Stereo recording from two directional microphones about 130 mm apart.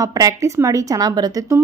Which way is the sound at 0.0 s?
25° right (ahead or behind).